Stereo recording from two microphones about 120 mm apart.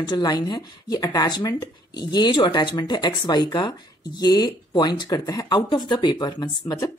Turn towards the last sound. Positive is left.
turn(degrees=30)  # may be behind; listen again after turning